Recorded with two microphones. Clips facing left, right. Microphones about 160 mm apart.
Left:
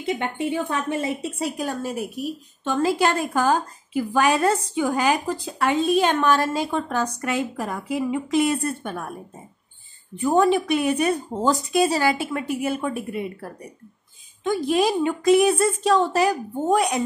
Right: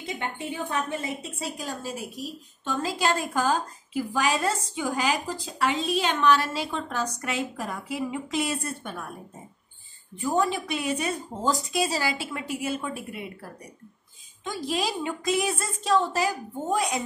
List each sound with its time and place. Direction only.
0.8 s a woman's voice: 60° left (ahead or behind)
10.1 s a woman's voice: 65° left (ahead or behind)
14.4 s a woman's voice: 55° left (ahead or behind)